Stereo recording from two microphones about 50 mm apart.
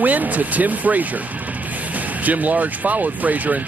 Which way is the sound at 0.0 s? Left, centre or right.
Right.